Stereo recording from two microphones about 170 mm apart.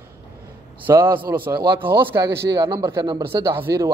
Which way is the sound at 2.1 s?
15° right (ahead or behind).